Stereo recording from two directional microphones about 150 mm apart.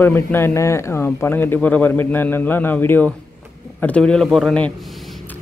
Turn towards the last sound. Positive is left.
turn(degrees=5)  # may be behind; listen again after turning